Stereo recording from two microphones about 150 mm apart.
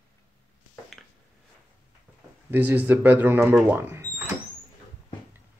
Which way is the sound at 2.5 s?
10° right (ahead or behind).